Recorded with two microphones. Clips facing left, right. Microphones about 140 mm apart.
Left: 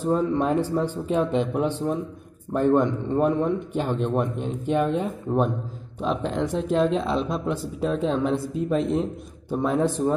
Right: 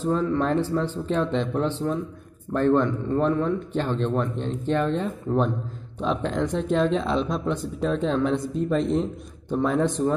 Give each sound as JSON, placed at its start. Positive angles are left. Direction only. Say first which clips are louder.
{"t": 0.0, "sound": "speech", "louder": "left 1 dB", "side_deg": 15}